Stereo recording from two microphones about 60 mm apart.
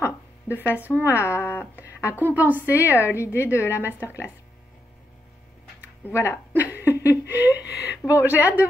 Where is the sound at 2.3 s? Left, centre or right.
Right.